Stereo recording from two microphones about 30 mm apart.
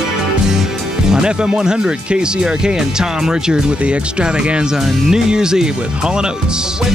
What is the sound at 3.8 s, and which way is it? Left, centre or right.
Speech, right.